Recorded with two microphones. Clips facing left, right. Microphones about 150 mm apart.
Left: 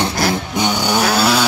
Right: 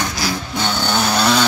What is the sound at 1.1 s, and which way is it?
Chainsaw, 5° left (ahead or behind).